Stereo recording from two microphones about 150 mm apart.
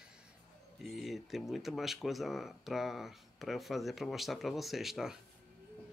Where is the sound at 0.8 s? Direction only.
Centre (ahead or behind).